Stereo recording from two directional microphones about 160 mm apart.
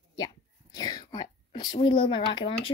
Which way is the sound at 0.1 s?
25° left (ahead or behind).